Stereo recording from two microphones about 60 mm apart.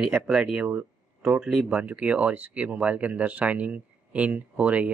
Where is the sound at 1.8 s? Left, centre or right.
Right.